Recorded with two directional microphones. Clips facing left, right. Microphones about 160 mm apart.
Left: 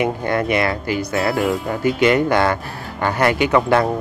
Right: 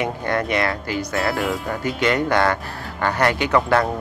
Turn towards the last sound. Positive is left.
turn(degrees=15)  # may be behind; listen again after turning